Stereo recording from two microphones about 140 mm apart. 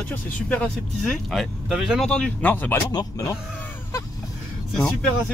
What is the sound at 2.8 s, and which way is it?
Speech, 25° left (ahead or behind).